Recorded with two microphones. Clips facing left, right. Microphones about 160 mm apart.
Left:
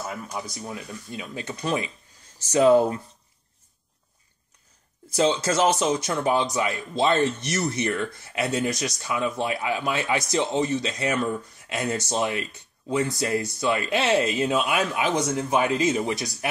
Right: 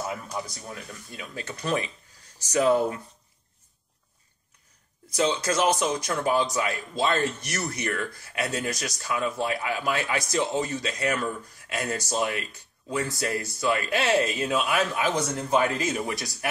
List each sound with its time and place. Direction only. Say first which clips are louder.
0.0 s speech: even; centre (ahead or behind)
1.3 s speech: left 1 dB; 20° left (ahead or behind)
5.1 s speech: left 3 dB; 30° left (ahead or behind)